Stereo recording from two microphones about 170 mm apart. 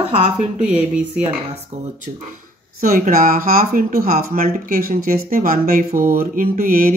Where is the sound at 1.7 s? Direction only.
40° right (ahead or behind).